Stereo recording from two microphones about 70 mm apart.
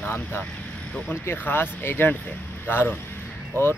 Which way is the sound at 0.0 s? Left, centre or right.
Left.